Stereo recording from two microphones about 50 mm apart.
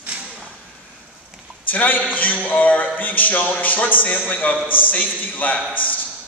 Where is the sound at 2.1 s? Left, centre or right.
Left.